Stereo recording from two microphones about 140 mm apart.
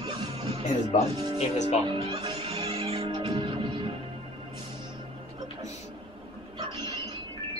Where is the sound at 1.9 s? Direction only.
40° right (ahead or behind).